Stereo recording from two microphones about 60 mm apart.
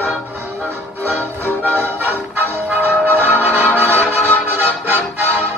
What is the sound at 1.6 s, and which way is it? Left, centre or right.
Music, right.